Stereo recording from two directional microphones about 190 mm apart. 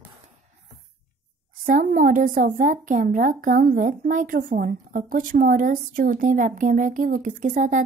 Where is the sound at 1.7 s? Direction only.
45° right (ahead or behind).